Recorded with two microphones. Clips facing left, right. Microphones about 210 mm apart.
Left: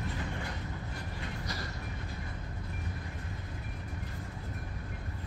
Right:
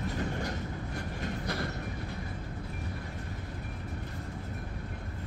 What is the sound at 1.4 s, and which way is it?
Train, 60° right (ahead or behind).